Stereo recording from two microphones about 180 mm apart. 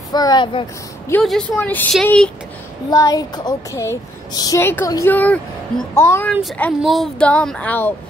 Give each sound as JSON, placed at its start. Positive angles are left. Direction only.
{"t": 0.1, "sound": "speech", "side_deg": 20}
{"t": 1.2, "sound": "speech", "side_deg": 5}
{"t": 2.9, "sound": "speech", "side_deg": 20}
{"t": 6.8, "sound": "speech", "side_deg": 0}